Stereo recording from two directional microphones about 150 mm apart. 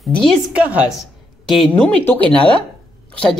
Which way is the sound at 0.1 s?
5° left (ahead or behind).